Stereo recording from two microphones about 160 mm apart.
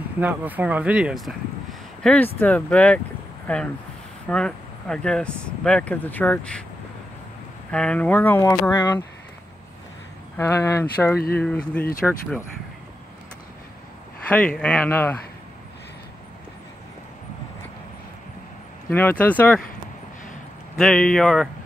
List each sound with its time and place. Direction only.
0.2 s speech: 10° right (ahead or behind); by 6.6 s 10° left (ahead or behind)
7.7 s speech: 5° left (ahead or behind)
10.3 s speech: 15° left (ahead or behind); by 12.2 s centre (ahead or behind)
14.3 s speech: 5° left (ahead or behind)
18.9 s speech: 10° left (ahead or behind)
20.7 s speech: 5° left (ahead or behind)